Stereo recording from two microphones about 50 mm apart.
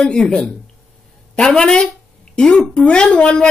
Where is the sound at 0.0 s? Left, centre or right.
Centre.